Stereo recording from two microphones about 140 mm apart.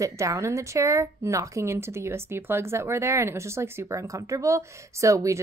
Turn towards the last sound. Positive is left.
turn(degrees=-20)  # may be behind; listen again after turning